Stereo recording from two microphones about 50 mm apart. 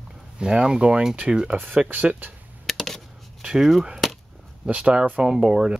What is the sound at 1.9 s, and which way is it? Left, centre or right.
Speech, right.